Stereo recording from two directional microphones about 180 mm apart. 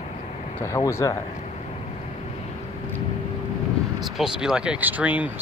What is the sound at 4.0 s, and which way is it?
Speech, centre (ahead or behind).